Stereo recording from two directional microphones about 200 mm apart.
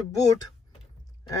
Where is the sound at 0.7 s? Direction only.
20° left (ahead or behind).